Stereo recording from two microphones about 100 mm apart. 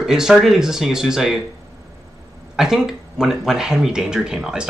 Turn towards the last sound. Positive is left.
turn(degrees=-5)  # may be behind; listen again after turning